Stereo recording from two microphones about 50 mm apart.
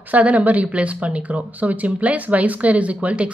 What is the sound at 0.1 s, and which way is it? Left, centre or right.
Speech, right.